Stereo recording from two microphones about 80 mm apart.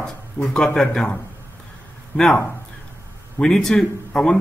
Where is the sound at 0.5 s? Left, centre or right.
Centre.